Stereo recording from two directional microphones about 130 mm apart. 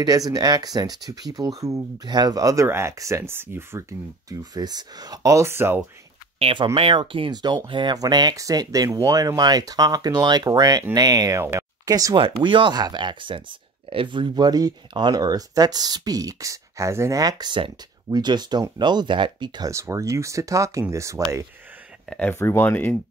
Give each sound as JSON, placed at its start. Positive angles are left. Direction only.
{"t": 0.0, "sound": "speech", "side_deg": -30}
{"t": 4.3, "sound": "speech", "side_deg": -30}
{"t": 6.4, "sound": "speech", "side_deg": -45}
{"t": 12.2, "sound": "speech", "side_deg": -40}
{"t": 19.7, "sound": "speech", "side_deg": -25}
{"t": 22.3, "sound": "speech", "side_deg": 20}